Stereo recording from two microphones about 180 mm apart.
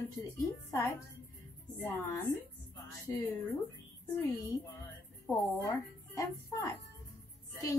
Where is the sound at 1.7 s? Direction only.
15° left (ahead or behind).